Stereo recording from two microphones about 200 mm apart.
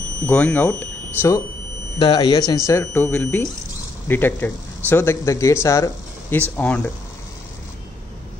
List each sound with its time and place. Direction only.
0.3 s speech: 5° left (ahead or behind)
2.0 s speech: 25° left (ahead or behind)